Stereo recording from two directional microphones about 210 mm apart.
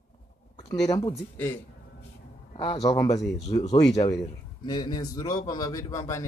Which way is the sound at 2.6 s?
20° left (ahead or behind).